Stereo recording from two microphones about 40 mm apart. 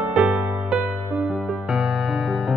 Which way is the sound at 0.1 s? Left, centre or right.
Right.